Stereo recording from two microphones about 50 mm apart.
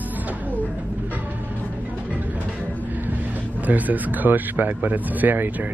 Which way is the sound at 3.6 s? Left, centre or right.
Right.